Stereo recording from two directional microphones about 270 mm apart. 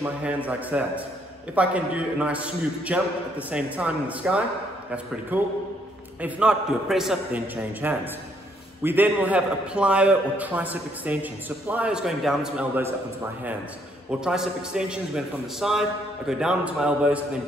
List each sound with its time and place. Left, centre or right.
0.0 s a man's voice: centre
14.2 s a man's voice: centre